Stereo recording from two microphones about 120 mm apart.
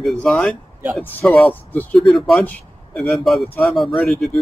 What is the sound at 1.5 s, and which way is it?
Speech, 15° left (ahead or behind).